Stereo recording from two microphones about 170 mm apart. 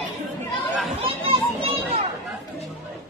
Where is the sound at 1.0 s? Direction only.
35° right (ahead or behind).